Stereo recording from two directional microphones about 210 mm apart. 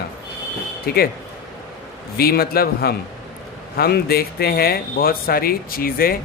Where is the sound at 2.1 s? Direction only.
45° left (ahead or behind).